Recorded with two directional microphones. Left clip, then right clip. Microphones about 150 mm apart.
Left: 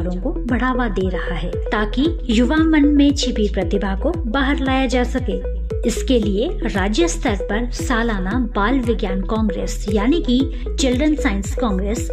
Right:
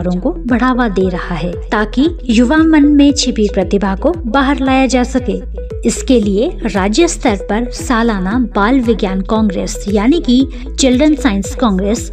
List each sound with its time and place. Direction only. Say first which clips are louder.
0.0 s a woman's voice: right 7 dB; 45° right (ahead or behind)